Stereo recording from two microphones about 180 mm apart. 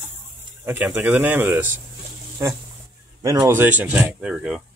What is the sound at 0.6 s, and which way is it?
Speech, 10° right (ahead or behind).